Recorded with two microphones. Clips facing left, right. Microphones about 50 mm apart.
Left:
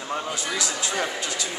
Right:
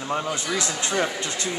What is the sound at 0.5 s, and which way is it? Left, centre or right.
Speech, right.